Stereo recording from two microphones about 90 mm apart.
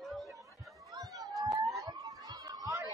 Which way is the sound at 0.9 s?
60° right (ahead or behind).